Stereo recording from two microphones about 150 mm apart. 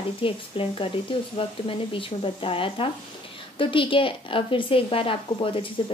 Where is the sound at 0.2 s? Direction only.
35° left (ahead or behind).